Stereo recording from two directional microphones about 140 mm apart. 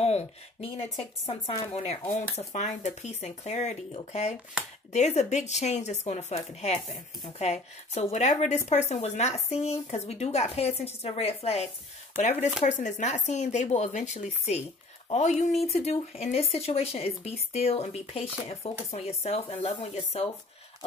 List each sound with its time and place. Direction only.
0.0 s speech: 45° left (ahead or behind)